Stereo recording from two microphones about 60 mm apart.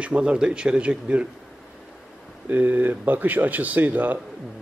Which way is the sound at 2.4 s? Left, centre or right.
Right.